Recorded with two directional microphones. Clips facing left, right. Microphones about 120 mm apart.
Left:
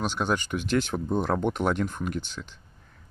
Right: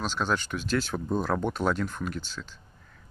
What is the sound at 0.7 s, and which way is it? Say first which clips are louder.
Speech: left 2 dB; 20° left (ahead or behind).